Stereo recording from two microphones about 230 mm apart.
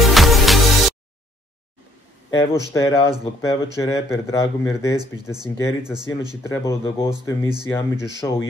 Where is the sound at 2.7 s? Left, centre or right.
Centre.